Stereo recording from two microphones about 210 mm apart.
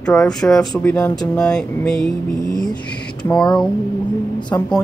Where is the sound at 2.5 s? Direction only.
20° left (ahead or behind).